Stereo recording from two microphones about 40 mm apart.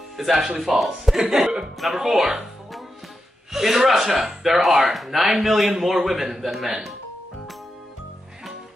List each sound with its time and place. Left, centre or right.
0.2 s a man's voice: centre
1.1 s speech: centre
3.5 s a man's voice: centre